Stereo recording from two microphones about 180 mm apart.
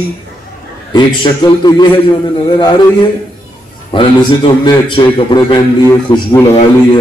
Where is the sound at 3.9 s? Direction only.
25° left (ahead or behind).